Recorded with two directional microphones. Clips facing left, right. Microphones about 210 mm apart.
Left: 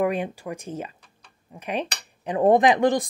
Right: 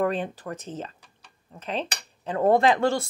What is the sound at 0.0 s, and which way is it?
Speech, 10° left (ahead or behind).